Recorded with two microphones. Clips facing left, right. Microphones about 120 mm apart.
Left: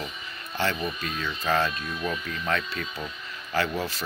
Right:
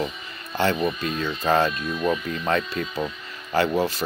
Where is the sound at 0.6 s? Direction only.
30° right (ahead or behind).